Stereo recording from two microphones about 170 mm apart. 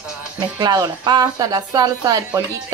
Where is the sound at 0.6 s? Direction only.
25° right (ahead or behind).